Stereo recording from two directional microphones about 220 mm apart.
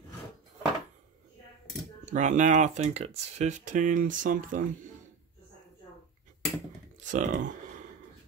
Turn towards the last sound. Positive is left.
turn(degrees=-35)  # may be behind; listen again after turning